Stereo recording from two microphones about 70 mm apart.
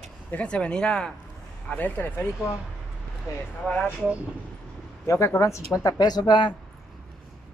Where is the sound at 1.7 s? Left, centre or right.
Left.